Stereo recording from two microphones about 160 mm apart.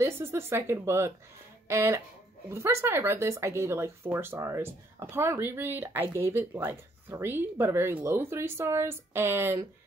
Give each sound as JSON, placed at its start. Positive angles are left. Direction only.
{"t": 0.0, "sound": "speech", "side_deg": -15}